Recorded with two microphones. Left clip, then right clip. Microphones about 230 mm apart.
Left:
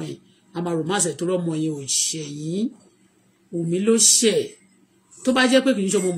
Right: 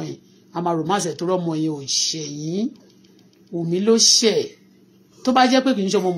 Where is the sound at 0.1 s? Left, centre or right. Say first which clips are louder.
Right 3 dB; centre.